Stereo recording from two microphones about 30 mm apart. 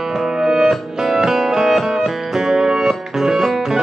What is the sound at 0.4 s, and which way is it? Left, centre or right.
Music, centre.